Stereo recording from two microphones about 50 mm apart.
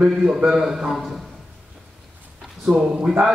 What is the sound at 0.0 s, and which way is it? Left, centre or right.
A man's voice, centre.